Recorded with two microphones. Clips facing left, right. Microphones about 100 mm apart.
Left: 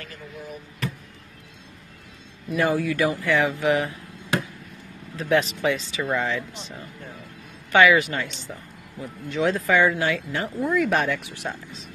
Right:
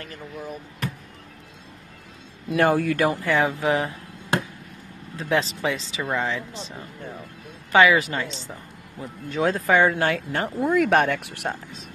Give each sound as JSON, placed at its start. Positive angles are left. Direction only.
{"t": 2.5, "sound": "speech", "side_deg": -60}
{"t": 3.2, "sound": "speech", "side_deg": -35}
{"t": 7.7, "sound": "speech", "side_deg": -30}
{"t": 9.3, "sound": "speech", "side_deg": -40}